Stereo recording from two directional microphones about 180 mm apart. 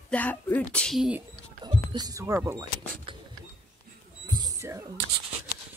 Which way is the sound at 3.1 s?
30° right (ahead or behind).